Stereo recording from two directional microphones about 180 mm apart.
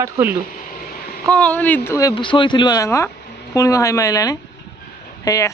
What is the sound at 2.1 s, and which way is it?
Speech, 25° left (ahead or behind).